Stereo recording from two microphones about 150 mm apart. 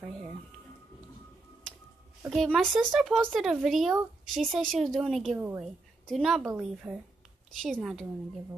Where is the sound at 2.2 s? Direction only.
Centre (ahead or behind).